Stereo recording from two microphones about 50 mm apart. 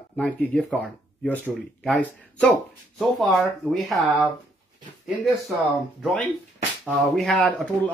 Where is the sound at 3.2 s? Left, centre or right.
Centre.